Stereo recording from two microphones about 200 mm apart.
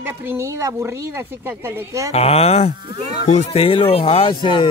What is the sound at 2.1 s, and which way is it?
Speech, 30° left (ahead or behind).